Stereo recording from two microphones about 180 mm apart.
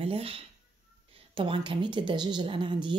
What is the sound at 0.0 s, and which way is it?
Speech, 30° right (ahead or behind).